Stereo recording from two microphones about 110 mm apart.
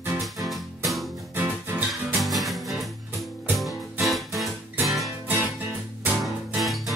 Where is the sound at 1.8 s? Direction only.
Centre (ahead or behind).